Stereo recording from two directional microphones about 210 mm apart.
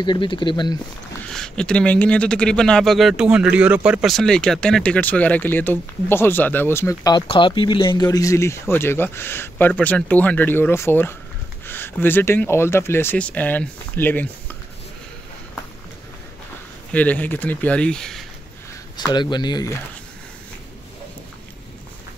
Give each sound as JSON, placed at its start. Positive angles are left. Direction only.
{"t": 0.0, "sound": "speech", "side_deg": 20}
{"t": 1.2, "sound": "speech", "side_deg": 5}
{"t": 16.9, "sound": "speech", "side_deg": 5}
{"t": 18.9, "sound": "speech", "side_deg": 20}